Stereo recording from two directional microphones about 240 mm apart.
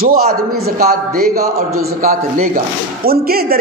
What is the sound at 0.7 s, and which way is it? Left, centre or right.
Speech, right.